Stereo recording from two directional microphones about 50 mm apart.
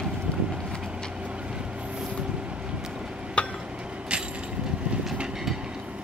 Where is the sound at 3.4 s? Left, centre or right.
Left.